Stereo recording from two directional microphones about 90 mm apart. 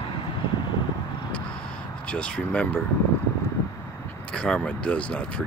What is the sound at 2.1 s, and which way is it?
Speech, 10° left (ahead or behind).